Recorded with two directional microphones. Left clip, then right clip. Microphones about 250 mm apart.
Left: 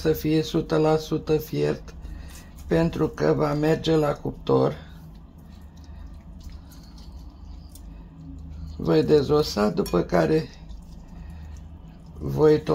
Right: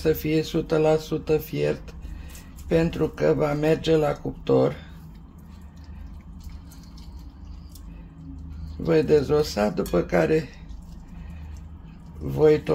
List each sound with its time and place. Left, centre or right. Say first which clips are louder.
0.0 s speech: even; centre
8.8 s speech: even; centre
12.4 s speech: even; centre